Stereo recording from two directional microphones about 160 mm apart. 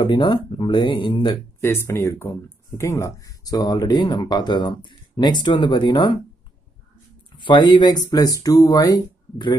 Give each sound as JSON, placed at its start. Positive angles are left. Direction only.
{"t": 0.0, "sound": "speech", "side_deg": 30}
{"t": 1.6, "sound": "speech", "side_deg": 15}
{"t": 7.3, "sound": "speech", "side_deg": 30}